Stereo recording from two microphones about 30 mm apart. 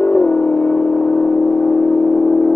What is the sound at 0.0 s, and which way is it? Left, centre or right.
Vehicle, left.